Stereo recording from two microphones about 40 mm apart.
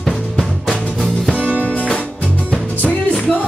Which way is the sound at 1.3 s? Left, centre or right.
Left.